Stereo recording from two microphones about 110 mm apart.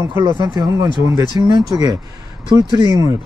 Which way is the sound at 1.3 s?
40° left (ahead or behind).